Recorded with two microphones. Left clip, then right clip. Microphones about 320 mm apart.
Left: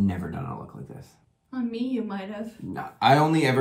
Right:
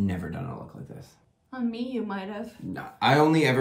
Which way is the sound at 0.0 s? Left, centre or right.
Centre.